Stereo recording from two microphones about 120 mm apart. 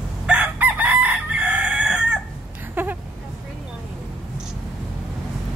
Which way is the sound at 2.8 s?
15° right (ahead or behind).